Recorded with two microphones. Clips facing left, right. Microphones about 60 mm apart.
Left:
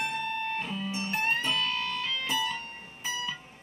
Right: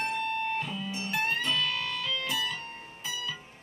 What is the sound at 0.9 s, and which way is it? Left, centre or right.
Music, left.